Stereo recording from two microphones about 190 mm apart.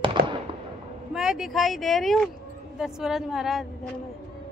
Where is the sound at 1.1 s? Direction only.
Centre (ahead or behind).